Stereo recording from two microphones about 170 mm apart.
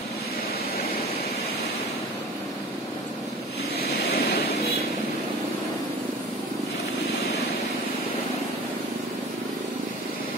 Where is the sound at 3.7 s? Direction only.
65° left (ahead or behind).